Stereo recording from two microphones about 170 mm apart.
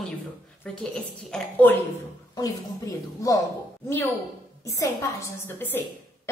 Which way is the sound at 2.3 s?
20° left (ahead or behind).